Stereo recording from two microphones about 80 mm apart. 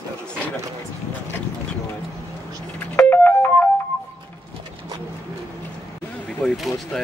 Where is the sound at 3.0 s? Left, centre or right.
Left.